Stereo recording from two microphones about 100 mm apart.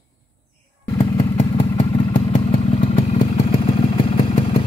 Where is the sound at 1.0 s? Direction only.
90° left.